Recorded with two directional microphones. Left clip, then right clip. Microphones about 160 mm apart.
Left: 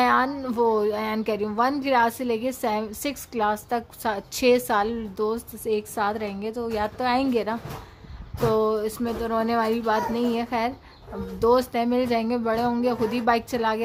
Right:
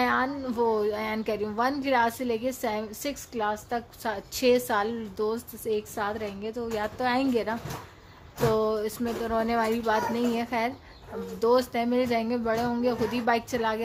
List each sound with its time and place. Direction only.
0.0 s a woman's voice: 30° left (ahead or behind)